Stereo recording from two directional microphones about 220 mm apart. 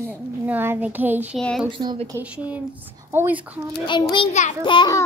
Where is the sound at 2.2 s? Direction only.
5° right (ahead or behind).